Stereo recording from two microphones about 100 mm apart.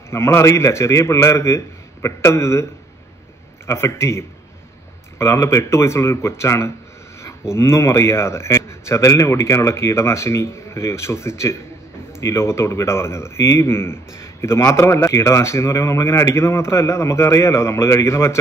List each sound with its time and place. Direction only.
0.1 s a man's voice: 25° left (ahead or behind)